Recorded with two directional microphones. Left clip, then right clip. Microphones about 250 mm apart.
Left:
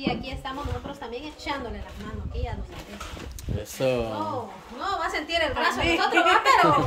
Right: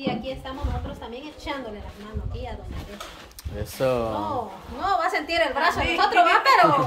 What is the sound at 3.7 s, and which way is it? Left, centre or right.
Speech, centre.